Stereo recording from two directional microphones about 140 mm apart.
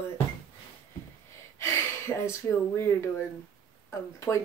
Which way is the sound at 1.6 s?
20° left (ahead or behind).